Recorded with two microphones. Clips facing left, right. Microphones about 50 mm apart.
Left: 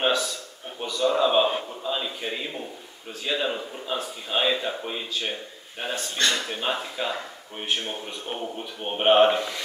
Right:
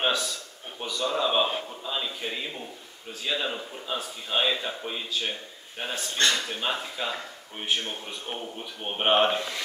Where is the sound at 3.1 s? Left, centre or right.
Centre.